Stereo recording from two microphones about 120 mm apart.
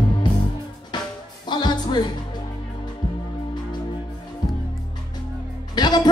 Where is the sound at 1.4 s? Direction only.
35° left (ahead or behind).